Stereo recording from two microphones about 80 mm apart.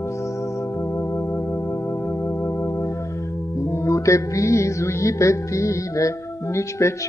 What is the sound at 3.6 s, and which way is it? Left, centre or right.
Music, left.